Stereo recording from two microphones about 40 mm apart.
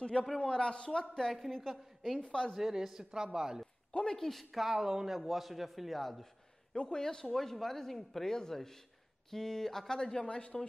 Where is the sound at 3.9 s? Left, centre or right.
Centre.